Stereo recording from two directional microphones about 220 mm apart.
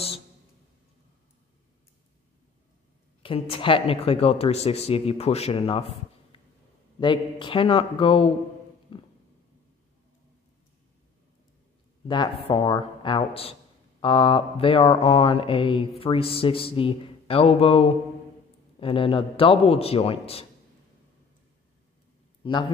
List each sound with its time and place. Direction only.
3.2 s mantra: 25° left (ahead or behind)
7.0 s mantra: 20° left (ahead or behind)
8.9 s a sound: 25° left (ahead or behind)
12.4 s mantra: 20° left (ahead or behind)
22.4 s a man's voice: 20° left (ahead or behind)